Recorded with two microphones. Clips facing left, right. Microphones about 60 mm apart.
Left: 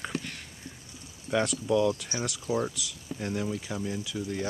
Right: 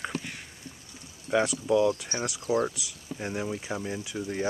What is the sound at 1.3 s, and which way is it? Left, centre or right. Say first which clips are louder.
Speech: right 2 dB; centre.